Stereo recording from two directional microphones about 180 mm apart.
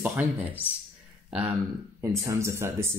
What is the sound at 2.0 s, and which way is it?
Speech, 15° right (ahead or behind).